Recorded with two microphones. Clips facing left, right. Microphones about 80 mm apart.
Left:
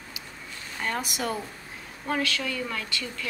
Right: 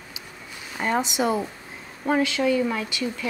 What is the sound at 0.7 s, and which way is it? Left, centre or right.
Speech, centre.